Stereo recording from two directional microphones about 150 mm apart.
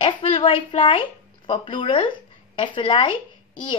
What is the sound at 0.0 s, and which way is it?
A woman's voice, 40° left (ahead or behind).